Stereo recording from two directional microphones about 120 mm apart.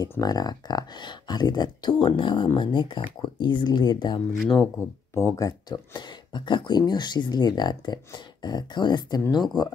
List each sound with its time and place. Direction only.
0.2 s speech: 30° left (ahead or behind)